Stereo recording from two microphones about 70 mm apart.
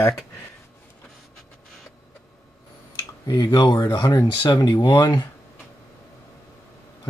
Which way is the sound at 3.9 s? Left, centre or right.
Left.